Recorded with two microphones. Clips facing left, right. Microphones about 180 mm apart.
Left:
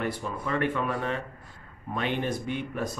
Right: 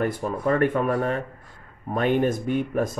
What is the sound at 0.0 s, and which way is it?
Speech, 45° right (ahead or behind).